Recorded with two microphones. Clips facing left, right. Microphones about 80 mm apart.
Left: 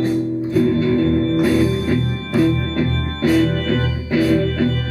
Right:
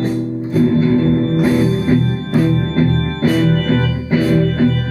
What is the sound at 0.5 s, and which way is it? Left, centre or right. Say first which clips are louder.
Music: right 3 dB; right.